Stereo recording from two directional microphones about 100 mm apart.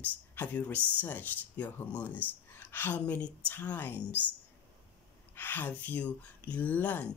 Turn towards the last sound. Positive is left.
turn(degrees=15)  # may be behind; listen again after turning